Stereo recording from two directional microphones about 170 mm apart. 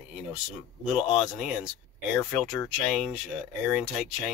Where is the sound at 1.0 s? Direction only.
25° left (ahead or behind).